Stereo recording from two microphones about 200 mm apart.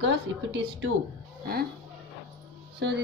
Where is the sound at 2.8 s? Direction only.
60° right (ahead or behind).